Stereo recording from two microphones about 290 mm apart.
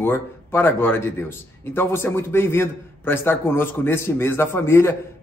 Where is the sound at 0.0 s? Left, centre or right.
Centre.